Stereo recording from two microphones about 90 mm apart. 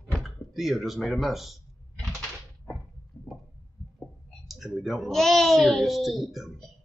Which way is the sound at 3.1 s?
25° left (ahead or behind).